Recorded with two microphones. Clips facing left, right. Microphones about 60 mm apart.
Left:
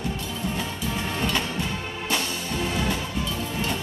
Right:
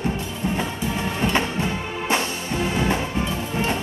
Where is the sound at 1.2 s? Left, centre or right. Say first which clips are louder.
Right 6 dB; right.